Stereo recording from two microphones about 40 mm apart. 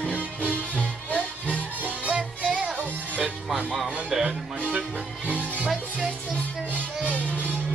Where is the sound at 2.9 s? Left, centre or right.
Right.